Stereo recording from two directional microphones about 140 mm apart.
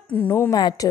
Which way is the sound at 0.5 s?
30° left (ahead or behind).